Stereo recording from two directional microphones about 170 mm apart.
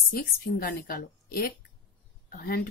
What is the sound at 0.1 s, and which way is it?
Speech, 55° left (ahead or behind).